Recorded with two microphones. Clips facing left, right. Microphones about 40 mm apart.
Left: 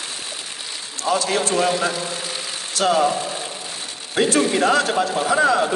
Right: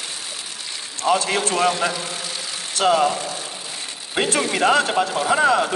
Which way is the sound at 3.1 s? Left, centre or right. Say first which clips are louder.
Left 2 dB; left.